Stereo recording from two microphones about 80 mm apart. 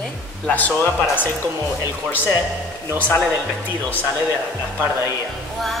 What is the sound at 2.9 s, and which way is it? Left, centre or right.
Speech, centre.